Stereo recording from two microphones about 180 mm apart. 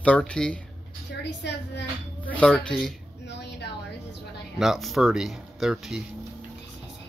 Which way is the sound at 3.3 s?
70° left (ahead or behind).